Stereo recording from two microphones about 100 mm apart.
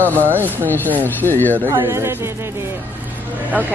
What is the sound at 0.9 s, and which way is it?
Speech, 20° left (ahead or behind).